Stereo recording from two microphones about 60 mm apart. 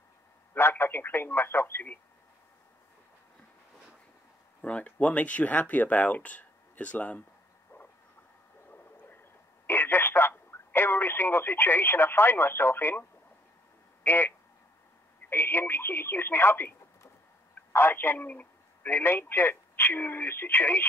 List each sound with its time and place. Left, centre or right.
0.6 s speech: left
4.6 s speech: left
9.7 s speech: left
14.0 s speech: left
18.9 s speech: left